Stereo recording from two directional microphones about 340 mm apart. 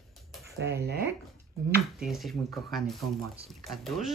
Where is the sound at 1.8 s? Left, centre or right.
Centre.